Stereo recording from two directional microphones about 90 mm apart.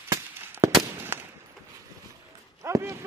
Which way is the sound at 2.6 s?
35° right (ahead or behind).